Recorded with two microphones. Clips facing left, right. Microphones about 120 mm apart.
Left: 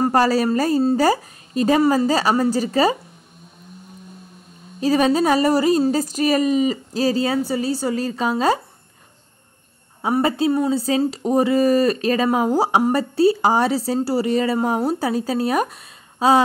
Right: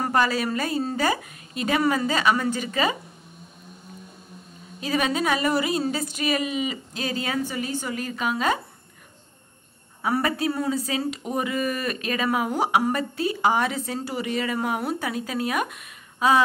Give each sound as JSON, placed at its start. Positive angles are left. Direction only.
{"t": 0.0, "sound": "speech", "side_deg": 35}
{"t": 4.7, "sound": "speech", "side_deg": 35}
{"t": 10.0, "sound": "speech", "side_deg": 25}